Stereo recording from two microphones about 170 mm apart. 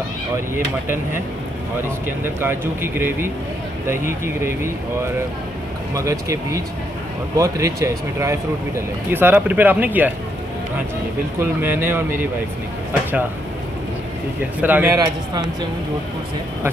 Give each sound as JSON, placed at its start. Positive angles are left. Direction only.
{"t": 2.0, "sound": "speech", "side_deg": -10}
{"t": 11.3, "sound": "speech", "side_deg": -15}
{"t": 14.6, "sound": "speech", "side_deg": -10}